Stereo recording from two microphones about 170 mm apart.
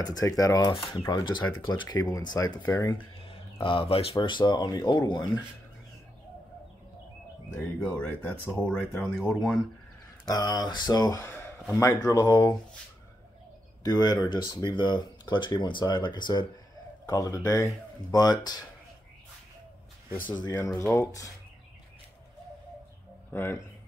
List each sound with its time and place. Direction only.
0.0 s speech: 20° left (ahead or behind)
3.3 s a sound: 30° left (ahead or behind)
4.1 s speech: 25° left (ahead or behind)
7.5 s speech: 10° left (ahead or behind)
10.3 s speech: 25° left (ahead or behind)
13.8 s speech: 25° left (ahead or behind)
20.5 s speech: 15° left (ahead or behind)
23.3 s speech: 15° left (ahead or behind)